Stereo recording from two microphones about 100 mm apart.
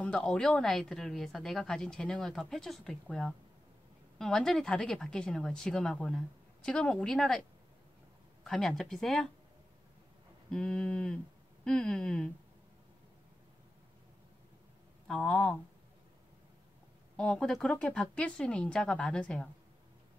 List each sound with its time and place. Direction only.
0.0 s a woman's voice: 10° left (ahead or behind)
8.5 s a woman's voice: 5° left (ahead or behind)
10.5 s speech: 10° left (ahead or behind)
15.0 s speech: 5° left (ahead or behind)
17.2 s speech: 5° left (ahead or behind)